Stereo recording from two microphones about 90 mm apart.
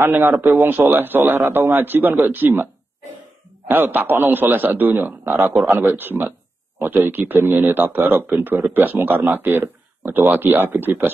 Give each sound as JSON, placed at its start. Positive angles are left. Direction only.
{"t": 0.0, "sound": "speech", "side_deg": -25}
{"t": 3.6, "sound": "speech", "side_deg": -20}